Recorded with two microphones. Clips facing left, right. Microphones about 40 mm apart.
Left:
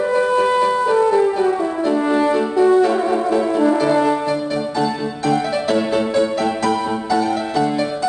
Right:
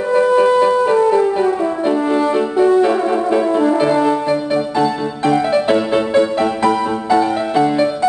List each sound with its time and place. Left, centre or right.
0.9 s music: centre
2.0 s french horn: centre
2.3 s music: centre
3.9 s music: centre
4.3 s music: right